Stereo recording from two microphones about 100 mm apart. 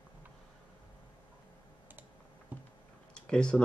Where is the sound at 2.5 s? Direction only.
15° right (ahead or behind).